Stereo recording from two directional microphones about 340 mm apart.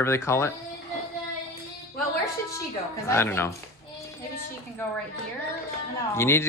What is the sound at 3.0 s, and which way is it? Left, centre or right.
Speech, centre.